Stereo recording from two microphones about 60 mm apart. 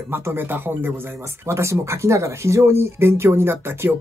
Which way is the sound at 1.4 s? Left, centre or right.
Right.